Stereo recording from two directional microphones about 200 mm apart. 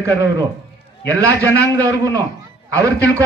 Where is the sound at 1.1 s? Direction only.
15° right (ahead or behind).